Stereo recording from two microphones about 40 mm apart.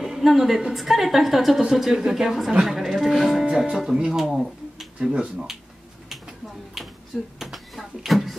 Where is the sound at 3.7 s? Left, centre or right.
Centre.